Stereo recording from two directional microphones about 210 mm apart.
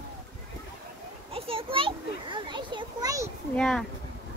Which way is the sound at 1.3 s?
25° right (ahead or behind).